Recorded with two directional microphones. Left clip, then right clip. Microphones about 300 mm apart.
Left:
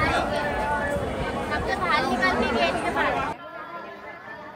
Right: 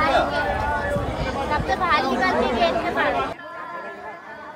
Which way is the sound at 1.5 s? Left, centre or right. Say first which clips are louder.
Right 4 dB; right.